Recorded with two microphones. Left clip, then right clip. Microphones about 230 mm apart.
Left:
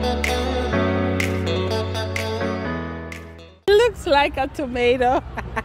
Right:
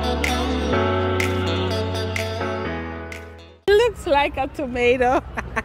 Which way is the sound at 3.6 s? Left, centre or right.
Centre.